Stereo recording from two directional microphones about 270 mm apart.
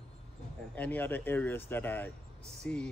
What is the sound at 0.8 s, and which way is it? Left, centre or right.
Speech, centre.